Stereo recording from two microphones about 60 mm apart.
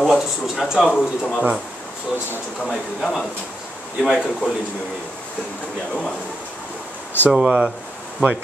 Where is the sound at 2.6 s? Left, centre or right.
Centre.